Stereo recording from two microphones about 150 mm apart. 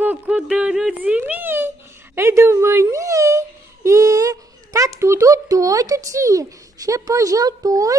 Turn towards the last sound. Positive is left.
turn(degrees=-25)  # may be behind; listen again after turning